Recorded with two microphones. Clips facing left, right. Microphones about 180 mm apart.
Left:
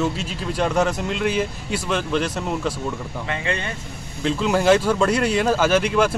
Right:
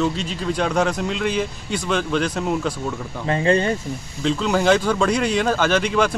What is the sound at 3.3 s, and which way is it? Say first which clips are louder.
Speech: right 9 dB; 35° right (ahead or behind).